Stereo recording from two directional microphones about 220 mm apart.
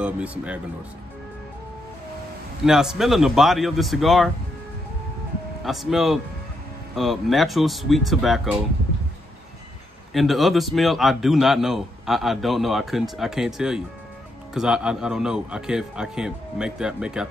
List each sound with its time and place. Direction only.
0.0 s a man's voice: 5° right (ahead or behind)
2.6 s a man's voice: centre (ahead or behind)
5.6 s a man's voice: centre (ahead or behind)
10.1 s a man's voice: centre (ahead or behind)